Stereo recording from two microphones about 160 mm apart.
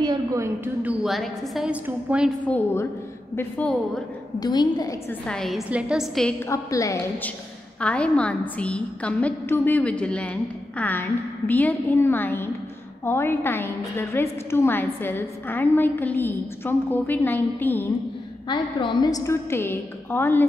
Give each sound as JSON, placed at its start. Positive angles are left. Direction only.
{"t": 0.0, "sound": "a woman's voice", "side_deg": -25}
{"t": 0.8, "sound": "a woman's voice", "side_deg": 0}
{"t": 2.4, "sound": "a woman's voice", "side_deg": 15}
{"t": 4.4, "sound": "a woman's voice", "side_deg": 25}
{"t": 5.2, "sound": "a woman's voice", "side_deg": 5}
{"t": 6.5, "sound": "a woman's voice", "side_deg": 20}
{"t": 7.8, "sound": "a woman's voice", "side_deg": 5}
{"t": 18.5, "sound": "a woman's voice", "side_deg": 30}